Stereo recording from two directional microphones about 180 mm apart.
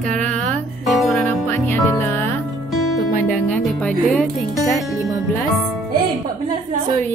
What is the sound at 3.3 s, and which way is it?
Speech, 5° left (ahead or behind).